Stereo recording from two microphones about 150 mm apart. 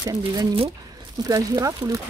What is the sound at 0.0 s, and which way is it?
Speech, 25° right (ahead or behind).